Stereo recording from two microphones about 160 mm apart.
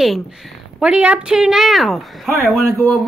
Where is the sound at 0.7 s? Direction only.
5° right (ahead or behind).